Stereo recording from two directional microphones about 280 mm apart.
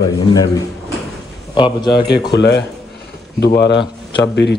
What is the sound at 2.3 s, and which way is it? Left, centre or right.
Speech, left.